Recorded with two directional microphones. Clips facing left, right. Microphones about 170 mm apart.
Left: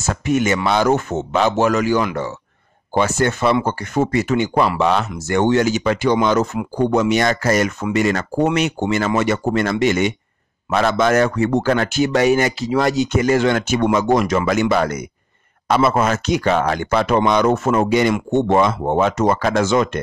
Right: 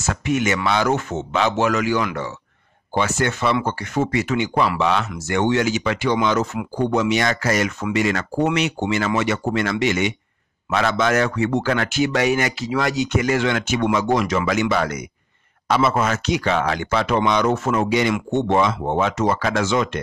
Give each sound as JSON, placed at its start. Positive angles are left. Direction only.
{"t": 0.0, "sound": "a man's voice", "side_deg": 40}